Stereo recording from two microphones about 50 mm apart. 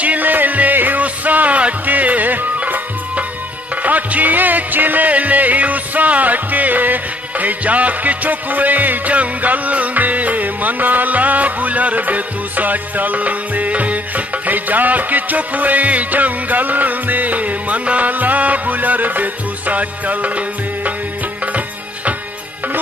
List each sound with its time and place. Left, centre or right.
0.0 s music: right